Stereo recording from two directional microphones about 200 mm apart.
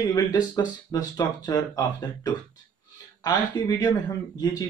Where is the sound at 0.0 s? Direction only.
20° left (ahead or behind).